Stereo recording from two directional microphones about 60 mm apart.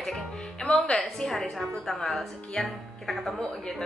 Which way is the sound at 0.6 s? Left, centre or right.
Centre.